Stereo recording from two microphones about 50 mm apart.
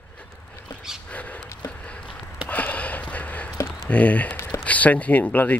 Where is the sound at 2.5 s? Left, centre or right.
Left.